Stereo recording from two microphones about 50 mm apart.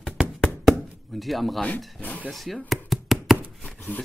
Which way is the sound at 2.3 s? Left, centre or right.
Centre.